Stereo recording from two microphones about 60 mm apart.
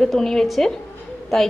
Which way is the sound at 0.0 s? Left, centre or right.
Centre.